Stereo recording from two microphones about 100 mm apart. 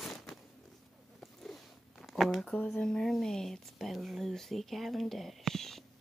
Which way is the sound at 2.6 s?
5° left (ahead or behind).